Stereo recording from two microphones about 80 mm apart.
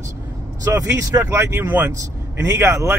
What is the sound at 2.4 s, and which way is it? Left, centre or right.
Speech, right.